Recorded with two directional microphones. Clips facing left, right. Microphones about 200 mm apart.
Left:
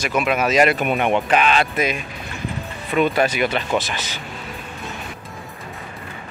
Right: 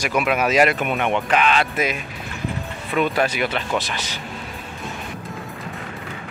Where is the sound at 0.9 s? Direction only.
15° left (ahead or behind).